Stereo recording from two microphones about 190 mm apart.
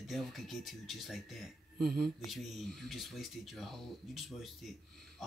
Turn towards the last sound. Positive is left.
turn(degrees=0)  # may be behind; listen again after turning